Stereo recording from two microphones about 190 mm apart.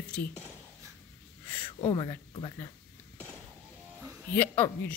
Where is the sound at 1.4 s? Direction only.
10° left (ahead or behind).